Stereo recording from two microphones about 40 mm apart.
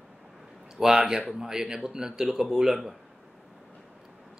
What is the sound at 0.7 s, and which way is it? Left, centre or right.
Speech, centre.